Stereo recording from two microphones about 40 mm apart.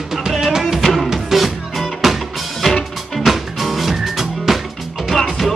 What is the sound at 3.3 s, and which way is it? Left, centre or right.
Music, centre.